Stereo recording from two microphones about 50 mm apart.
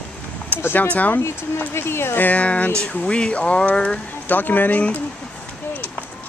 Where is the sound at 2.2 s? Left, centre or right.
Left.